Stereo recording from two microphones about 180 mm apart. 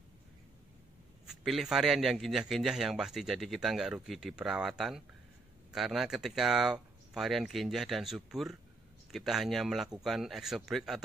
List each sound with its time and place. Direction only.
1.4 s a man's voice: centre (ahead or behind)